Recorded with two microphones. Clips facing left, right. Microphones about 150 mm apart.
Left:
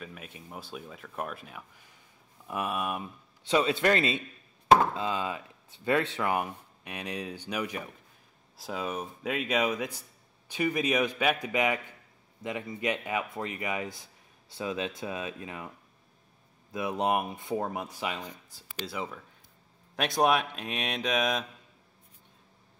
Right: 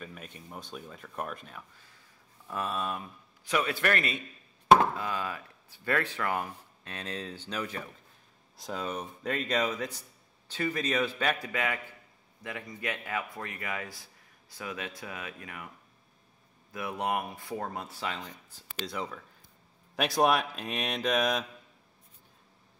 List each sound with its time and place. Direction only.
0.0 s speech: 5° left (ahead or behind); by 15.7 s 25° left (ahead or behind)
16.7 s speech: 20° left (ahead or behind); by 21.5 s centre (ahead or behind)